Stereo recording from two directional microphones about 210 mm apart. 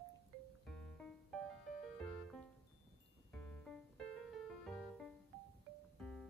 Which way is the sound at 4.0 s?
Centre (ahead or behind).